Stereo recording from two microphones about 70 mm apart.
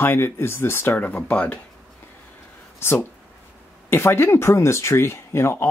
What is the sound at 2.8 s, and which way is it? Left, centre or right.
Speech, left.